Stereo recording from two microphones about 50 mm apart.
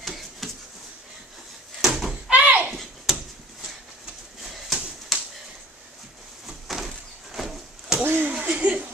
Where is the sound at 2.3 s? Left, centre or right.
Right.